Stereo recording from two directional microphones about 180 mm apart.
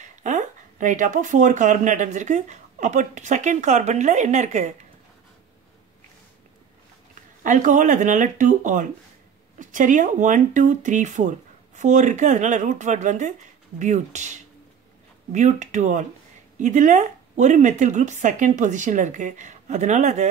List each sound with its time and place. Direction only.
0.2 s speech: 45° right (ahead or behind)
7.4 s speech: 45° right (ahead or behind)